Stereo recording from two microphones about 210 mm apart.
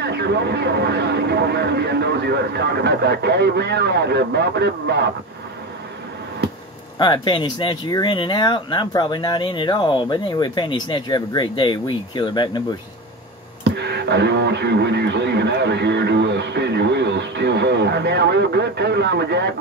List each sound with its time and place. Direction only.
0.0 s speech: 55° right (ahead or behind)
7.0 s speech: 25° left (ahead or behind)
13.7 s speech: 55° right (ahead or behind)